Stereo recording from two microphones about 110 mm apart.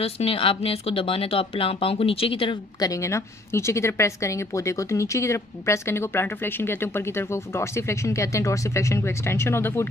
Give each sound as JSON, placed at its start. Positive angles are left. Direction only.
{"t": 0.0, "sound": "speech", "side_deg": 60}
{"t": 2.8, "sound": "a woman's voice", "side_deg": 30}